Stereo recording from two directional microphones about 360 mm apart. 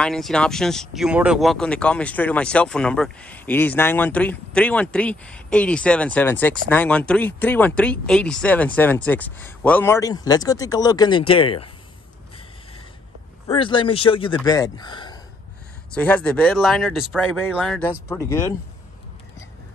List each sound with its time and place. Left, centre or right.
0.0 s speech: centre
13.5 s speech: centre